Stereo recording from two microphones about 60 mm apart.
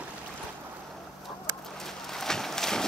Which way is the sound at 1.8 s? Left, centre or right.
Centre.